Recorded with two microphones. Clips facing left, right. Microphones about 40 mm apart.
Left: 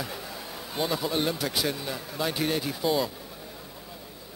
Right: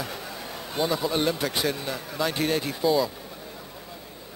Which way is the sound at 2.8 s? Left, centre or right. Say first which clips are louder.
Right 4 dB; centre.